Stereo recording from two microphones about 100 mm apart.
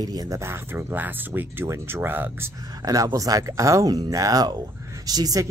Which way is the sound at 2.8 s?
35° right (ahead or behind).